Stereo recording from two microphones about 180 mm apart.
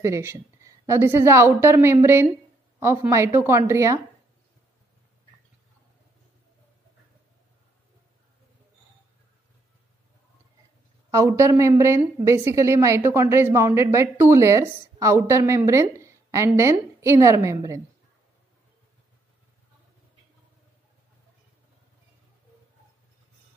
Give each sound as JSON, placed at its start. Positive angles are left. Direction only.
{"t": 0.0, "sound": "a woman's voice", "side_deg": -15}
{"t": 11.1, "sound": "a woman's voice", "side_deg": -15}